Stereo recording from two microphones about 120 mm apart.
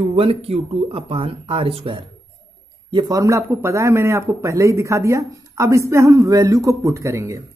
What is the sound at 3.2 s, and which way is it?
A man's voice, 25° right (ahead or behind).